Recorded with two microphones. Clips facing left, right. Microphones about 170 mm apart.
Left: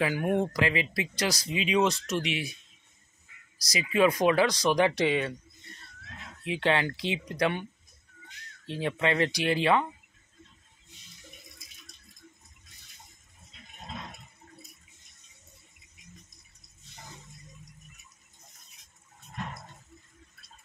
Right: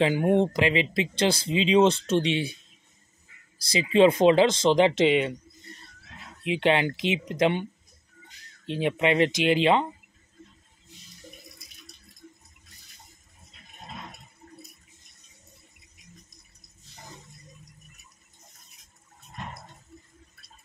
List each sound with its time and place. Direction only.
0.0 s speech: 25° right (ahead or behind)
3.5 s speech: 30° right (ahead or behind)
6.4 s speech: 20° right (ahead or behind)
8.6 s speech: 20° right (ahead or behind)